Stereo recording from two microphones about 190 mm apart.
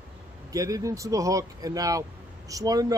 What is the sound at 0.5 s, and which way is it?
Speech, 20° right (ahead or behind).